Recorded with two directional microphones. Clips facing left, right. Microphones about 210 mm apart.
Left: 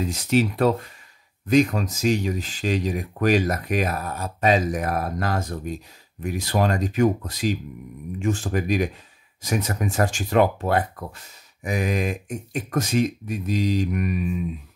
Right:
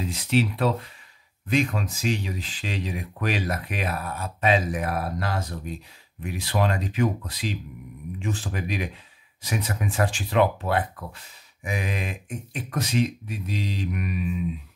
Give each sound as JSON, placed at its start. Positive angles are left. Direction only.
{"t": 0.0, "sound": "speech", "side_deg": 45}